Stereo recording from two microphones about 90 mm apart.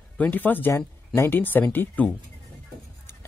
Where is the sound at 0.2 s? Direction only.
20° left (ahead or behind).